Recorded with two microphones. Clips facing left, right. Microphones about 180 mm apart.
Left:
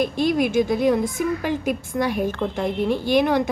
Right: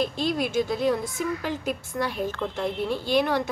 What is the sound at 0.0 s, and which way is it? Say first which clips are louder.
A woman's voice: left 6 dB; 15° left (ahead or behind).